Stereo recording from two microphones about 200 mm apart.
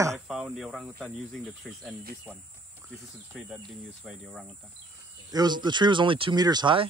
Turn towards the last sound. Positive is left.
turn(degrees=-25)  # may be behind; listen again after turning